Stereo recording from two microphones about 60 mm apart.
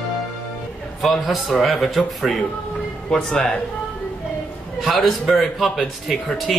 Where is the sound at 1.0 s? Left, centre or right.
Centre.